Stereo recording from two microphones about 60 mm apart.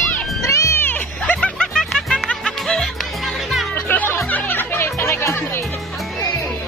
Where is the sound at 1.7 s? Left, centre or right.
Centre.